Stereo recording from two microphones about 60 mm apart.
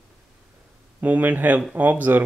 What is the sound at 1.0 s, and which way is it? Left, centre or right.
Speech, right.